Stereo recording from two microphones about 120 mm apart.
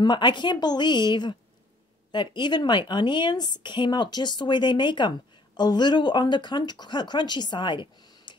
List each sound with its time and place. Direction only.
0.0 s a woman's voice: 40° left (ahead or behind)